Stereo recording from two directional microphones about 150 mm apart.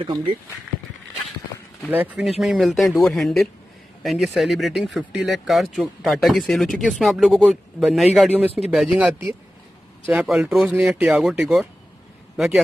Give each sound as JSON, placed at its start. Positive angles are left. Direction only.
{"t": 0.0, "sound": "speech", "side_deg": -35}
{"t": 1.9, "sound": "speech", "side_deg": -10}